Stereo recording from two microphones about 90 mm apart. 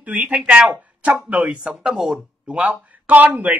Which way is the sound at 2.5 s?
15° right (ahead or behind).